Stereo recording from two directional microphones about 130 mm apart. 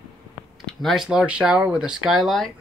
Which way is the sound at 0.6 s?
Centre (ahead or behind).